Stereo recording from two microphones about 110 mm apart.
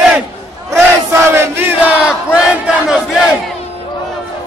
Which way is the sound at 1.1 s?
20° right (ahead or behind).